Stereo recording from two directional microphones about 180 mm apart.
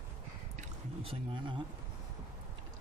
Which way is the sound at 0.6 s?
30° right (ahead or behind).